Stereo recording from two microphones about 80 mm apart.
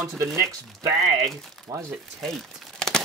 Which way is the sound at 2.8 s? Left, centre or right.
Centre.